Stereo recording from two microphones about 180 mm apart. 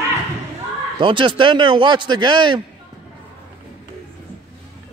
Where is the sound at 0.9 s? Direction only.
25° right (ahead or behind).